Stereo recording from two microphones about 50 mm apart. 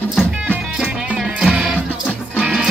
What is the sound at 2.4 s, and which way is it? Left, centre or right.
Music, centre.